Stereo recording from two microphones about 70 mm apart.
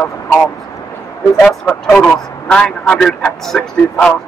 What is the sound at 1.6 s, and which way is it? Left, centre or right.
A man's voice, centre.